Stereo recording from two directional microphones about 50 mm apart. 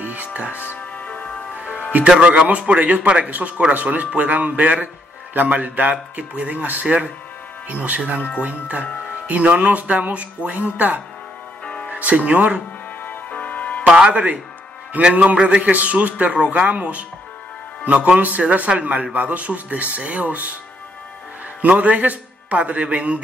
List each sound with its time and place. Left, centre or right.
0.0 s music: right
0.7 s music: left
2.1 s a man's voice: right
11.6 s music: left
11.9 s speech: right
13.0 s music: left
13.8 s a man's voice: centre
21.5 s a man's voice: right